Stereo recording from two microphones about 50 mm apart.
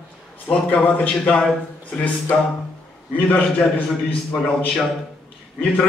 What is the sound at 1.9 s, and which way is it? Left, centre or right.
Speech, centre.